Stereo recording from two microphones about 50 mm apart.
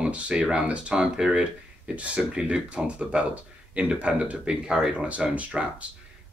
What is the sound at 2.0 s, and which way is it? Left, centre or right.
Speech, right.